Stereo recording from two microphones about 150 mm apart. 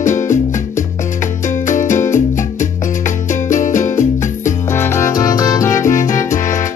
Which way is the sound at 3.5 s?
55° left (ahead or behind).